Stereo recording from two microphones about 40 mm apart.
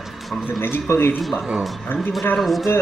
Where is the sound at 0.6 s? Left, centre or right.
Left.